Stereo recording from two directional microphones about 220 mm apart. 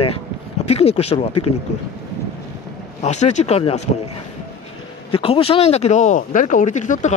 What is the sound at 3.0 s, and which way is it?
Speech, 30° left (ahead or behind).